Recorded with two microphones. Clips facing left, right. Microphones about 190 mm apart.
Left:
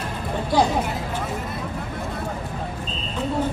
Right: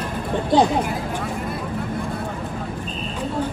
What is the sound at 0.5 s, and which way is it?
Chatter, 20° right (ahead or behind).